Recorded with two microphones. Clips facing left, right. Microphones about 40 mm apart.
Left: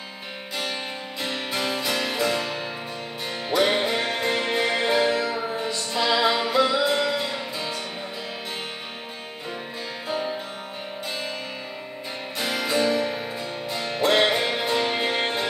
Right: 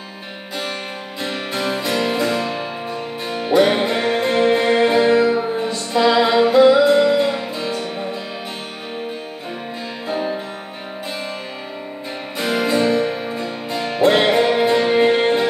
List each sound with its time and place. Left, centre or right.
1.2 s music: centre
3.6 s music: centre
10.0 s music: centre
12.4 s music: centre
13.7 s music: right
14.1 s music: centre